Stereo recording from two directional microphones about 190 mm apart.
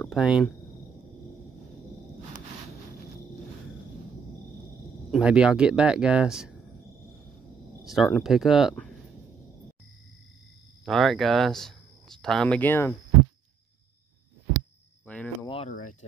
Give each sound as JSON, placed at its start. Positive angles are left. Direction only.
{"t": 0.0, "sound": "speech", "side_deg": 0}
{"t": 5.1, "sound": "speech", "side_deg": -5}
{"t": 7.8, "sound": "speech", "side_deg": 0}
{"t": 10.9, "sound": "speech", "side_deg": 0}
{"t": 15.4, "sound": "a sound", "side_deg": 30}
{"t": 15.7, "sound": "a sound", "side_deg": 40}